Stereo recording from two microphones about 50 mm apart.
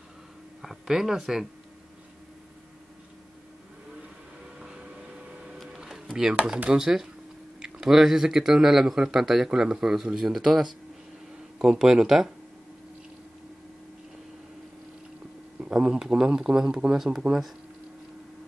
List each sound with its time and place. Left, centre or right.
0.6 s speech: centre
4.6 s train: centre
5.8 s a sound: centre
6.7 s speech: centre
15.6 s speech: right; by 17.2 s centre